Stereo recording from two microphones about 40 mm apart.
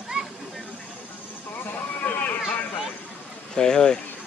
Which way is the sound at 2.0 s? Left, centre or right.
Left.